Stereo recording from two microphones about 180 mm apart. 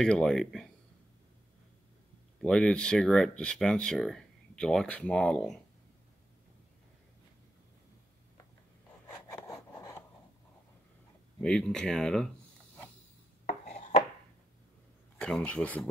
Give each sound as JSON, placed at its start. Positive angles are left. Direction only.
{"t": 0.0, "sound": "speech", "side_deg": 5}
{"t": 2.4, "sound": "speech", "side_deg": 5}
{"t": 11.4, "sound": "speech", "side_deg": 5}
{"t": 13.5, "sound": "chopping", "side_deg": 40}
{"t": 15.1, "sound": "a man's voice", "side_deg": 5}